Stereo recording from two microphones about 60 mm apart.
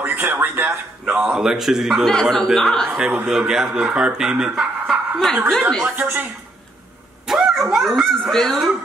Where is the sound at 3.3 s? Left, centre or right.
Centre.